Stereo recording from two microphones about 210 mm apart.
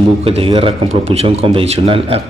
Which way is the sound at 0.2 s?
25° right (ahead or behind).